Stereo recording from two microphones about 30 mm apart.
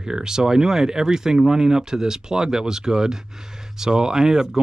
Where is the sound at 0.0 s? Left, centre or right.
Right.